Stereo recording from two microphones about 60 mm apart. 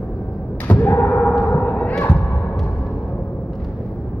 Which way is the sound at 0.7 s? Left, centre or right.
Left.